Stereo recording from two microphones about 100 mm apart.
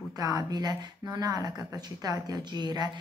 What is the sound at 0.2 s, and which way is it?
A woman's voice, 40° right (ahead or behind).